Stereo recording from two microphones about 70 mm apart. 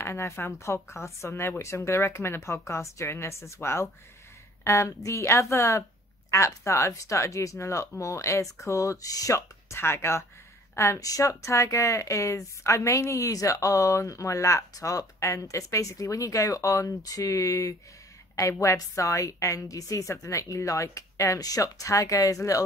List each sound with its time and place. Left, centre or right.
0.0 s speech: left
18.3 s speech: left